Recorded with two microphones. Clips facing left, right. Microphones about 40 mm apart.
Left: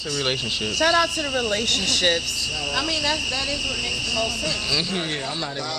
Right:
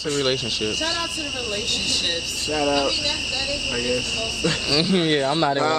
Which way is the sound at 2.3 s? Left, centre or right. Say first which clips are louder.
Right 5 dB; right.